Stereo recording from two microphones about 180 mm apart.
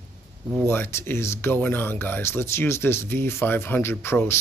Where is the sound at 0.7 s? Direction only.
15° left (ahead or behind).